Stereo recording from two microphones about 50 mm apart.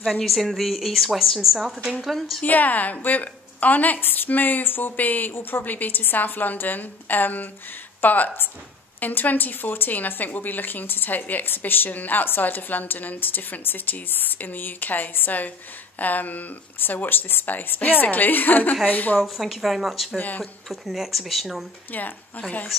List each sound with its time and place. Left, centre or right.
0.2 s a woman's voice: centre
2.4 s speech: left
19.1 s speech: centre
20.2 s speech: left
20.6 s speech: centre
21.9 s speech: left